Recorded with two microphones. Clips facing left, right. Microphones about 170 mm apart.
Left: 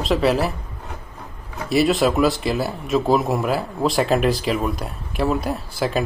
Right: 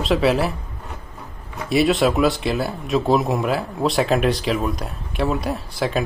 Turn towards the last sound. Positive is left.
turn(degrees=0)  # may be behind; listen again after turning